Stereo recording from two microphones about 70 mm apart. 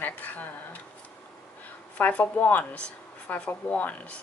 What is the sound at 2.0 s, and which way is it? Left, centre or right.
Speech, left.